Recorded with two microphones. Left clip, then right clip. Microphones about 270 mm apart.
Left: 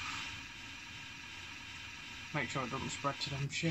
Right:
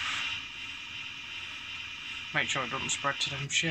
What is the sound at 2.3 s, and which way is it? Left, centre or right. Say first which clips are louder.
Speech: right 8 dB; centre.